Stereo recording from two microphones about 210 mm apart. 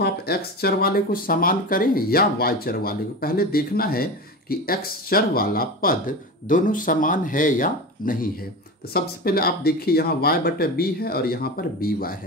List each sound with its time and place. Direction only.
0.0 s speech: 50° left (ahead or behind)